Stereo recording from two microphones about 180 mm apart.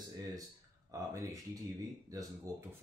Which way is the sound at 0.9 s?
20° right (ahead or behind).